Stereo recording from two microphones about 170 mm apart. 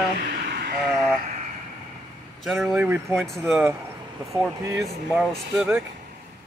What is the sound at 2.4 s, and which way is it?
Speech, centre (ahead or behind).